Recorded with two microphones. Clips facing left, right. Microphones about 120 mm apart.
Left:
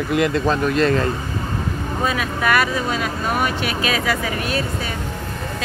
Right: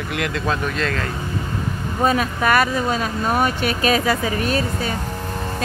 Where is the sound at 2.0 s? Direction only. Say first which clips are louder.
Right 4 dB; 40° right (ahead or behind).